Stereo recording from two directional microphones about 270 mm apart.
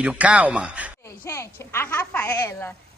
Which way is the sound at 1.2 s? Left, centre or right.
Centre.